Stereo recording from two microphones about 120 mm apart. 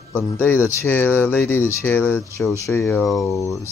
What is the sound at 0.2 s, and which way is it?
Speech, 20° left (ahead or behind).